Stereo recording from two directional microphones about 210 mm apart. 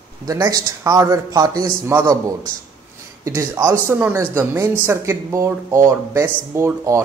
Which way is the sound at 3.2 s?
10° right (ahead or behind).